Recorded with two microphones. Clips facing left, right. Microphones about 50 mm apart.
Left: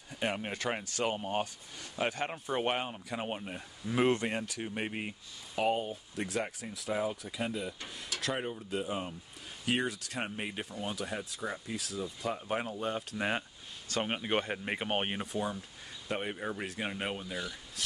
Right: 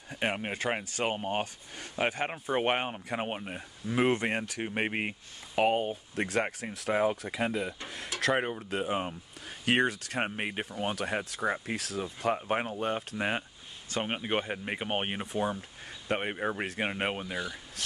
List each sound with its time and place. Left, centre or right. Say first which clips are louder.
0.3 s speech: right 3 dB; right
4.2 s speech: right 3 dB; right
12.4 s speech: right 4 dB; right
14.0 s speech: right 1 dB; centre
15.3 s speech: right 4 dB; right
17.8 s speech: even; right